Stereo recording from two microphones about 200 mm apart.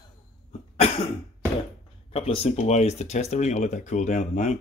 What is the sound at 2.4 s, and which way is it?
Speech, 35° left (ahead or behind).